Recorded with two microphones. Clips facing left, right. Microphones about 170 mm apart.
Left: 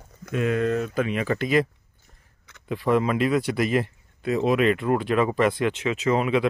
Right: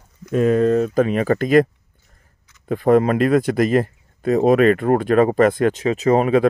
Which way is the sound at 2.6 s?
45° right (ahead or behind).